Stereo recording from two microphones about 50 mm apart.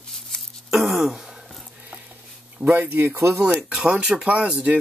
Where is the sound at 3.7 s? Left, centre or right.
Centre.